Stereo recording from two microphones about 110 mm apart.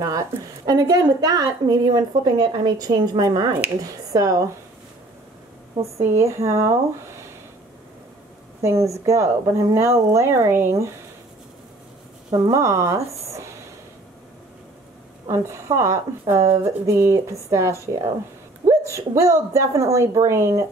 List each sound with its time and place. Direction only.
0.0 s a woman's voice: 30° right (ahead or behind)
6.0 s speech: 25° right (ahead or behind)
8.6 s speech: 25° right (ahead or behind)
12.3 s speech: 30° right (ahead or behind)
13.3 s a sound: 25° right (ahead or behind)
15.2 s speech: 25° right (ahead or behind)